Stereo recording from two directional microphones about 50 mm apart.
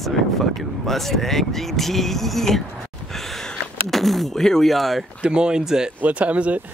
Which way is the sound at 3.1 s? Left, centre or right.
Centre.